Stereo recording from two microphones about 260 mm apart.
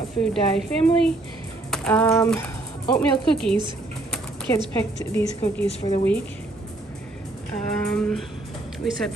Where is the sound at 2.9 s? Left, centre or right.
Centre.